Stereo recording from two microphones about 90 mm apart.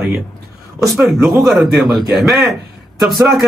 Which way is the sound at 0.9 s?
Centre (ahead or behind).